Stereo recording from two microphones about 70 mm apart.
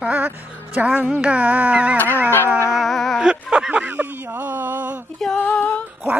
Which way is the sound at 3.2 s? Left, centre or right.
Centre.